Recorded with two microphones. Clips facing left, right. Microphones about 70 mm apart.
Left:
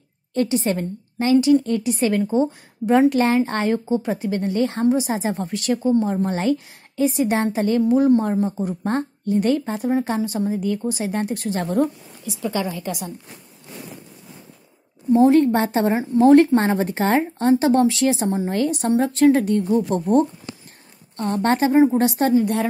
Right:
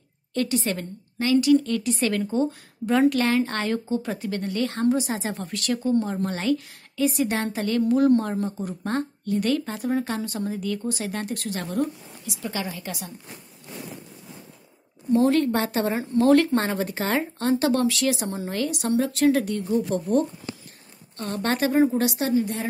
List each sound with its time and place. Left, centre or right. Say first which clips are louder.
0.3 s speech: left 5 dB; left
15.1 s a woman's voice: left 5 dB; left